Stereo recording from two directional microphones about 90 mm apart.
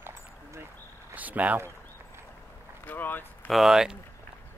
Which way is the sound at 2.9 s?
20° left (ahead or behind).